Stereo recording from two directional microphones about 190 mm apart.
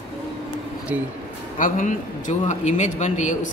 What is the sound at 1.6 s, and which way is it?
A man's voice, 40° left (ahead or behind).